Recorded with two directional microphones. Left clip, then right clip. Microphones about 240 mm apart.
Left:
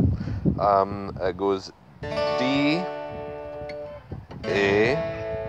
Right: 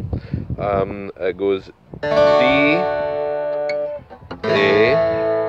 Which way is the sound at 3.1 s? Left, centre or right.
Right.